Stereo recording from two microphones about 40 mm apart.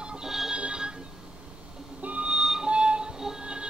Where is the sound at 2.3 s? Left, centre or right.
Centre.